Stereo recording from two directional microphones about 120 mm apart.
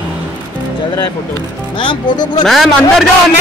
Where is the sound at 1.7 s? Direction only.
40° left (ahead or behind).